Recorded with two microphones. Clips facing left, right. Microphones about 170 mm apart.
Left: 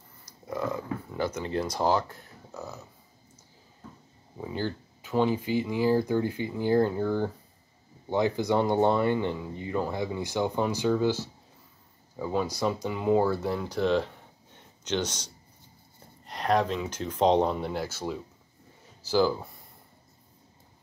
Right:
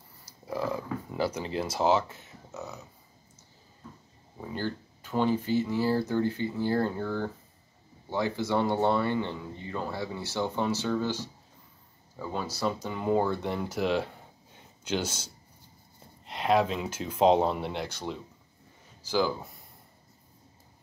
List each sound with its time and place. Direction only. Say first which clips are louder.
0.2 s a sound: even; 30° right (ahead or behind)
1.3 s speech: left 2 dB; 25° right (ahead or behind)
1.7 s speech: right 2 dB; 5° right (ahead or behind)
4.4 s speech: left 2 dB; 10° left (ahead or behind)